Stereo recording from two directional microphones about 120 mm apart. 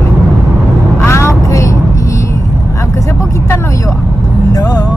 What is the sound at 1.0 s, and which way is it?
Vehicle, 20° left (ahead or behind).